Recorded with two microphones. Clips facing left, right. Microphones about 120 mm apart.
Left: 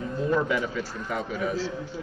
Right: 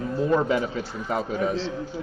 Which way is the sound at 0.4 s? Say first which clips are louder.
Right 3 dB; 30° right (ahead or behind).